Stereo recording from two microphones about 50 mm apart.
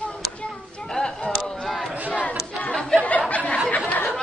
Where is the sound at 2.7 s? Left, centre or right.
Centre.